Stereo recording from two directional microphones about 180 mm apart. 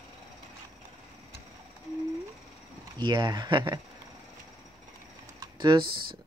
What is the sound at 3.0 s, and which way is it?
Speech, 25° right (ahead or behind).